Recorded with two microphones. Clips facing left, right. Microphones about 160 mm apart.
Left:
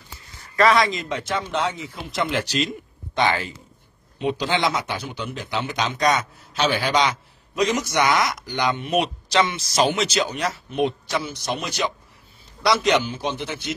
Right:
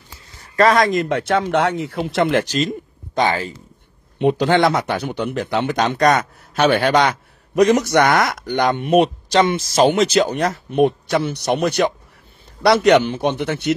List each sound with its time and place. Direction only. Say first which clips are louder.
0.6 s speech: right 4 dB; 45° right (ahead or behind)
3.2 s speech: right 3 dB; 35° right (ahead or behind)
4.2 s speech: right 7 dB; 55° right (ahead or behind)